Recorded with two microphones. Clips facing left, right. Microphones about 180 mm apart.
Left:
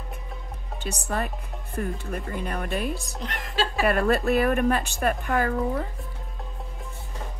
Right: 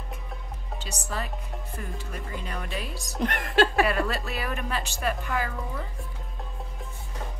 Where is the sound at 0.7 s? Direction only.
60° left (ahead or behind).